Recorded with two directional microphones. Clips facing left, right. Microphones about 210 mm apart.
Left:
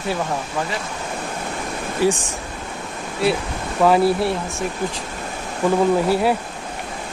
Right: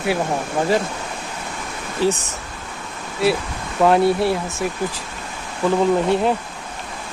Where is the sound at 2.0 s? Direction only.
10° left (ahead or behind).